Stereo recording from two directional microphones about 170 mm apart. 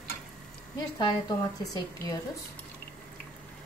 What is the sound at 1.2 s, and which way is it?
Speech, 20° left (ahead or behind).